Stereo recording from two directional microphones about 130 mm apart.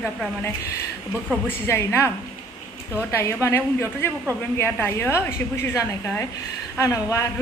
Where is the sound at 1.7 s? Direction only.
20° left (ahead or behind).